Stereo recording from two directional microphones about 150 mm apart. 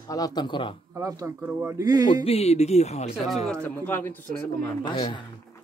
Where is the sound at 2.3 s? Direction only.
45° left (ahead or behind).